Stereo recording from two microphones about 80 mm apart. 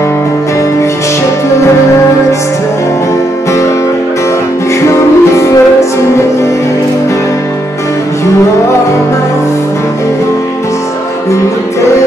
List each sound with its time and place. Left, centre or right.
5.3 s music: left